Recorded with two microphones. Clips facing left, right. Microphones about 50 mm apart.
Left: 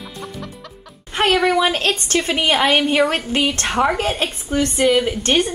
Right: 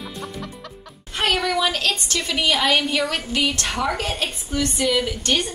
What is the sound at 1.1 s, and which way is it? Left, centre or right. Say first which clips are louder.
A woman's voice: left 5 dB; left.